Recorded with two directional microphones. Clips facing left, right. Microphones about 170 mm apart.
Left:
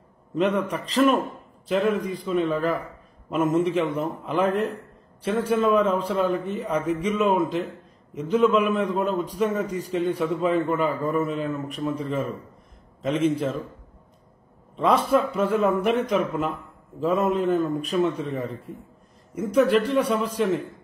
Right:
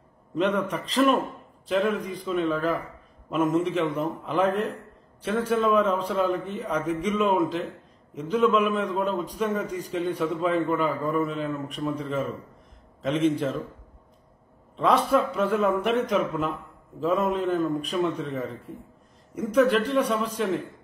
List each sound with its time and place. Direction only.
0.4 s a man's voice: 5° left (ahead or behind)
1.8 s a man's voice: 45° left (ahead or behind)
2.2 s a man's voice: 5° left (ahead or behind)
14.8 s a man's voice: centre (ahead or behind)